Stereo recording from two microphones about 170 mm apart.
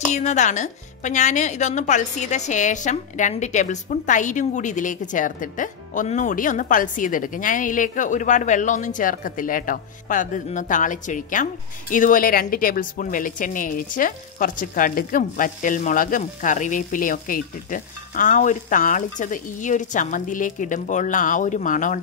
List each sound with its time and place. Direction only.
0.1 s a woman's voice: 45° left (ahead or behind)